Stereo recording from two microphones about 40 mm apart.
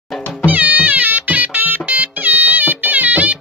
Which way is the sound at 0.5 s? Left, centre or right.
Right.